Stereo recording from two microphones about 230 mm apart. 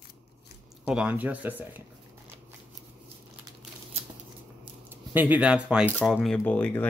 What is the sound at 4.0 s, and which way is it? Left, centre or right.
Shuffling cards, right.